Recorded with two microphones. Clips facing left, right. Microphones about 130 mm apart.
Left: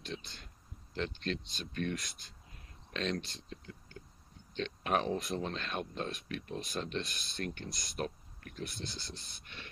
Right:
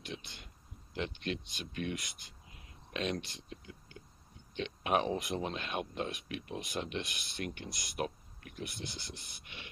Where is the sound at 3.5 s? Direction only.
10° right (ahead or behind).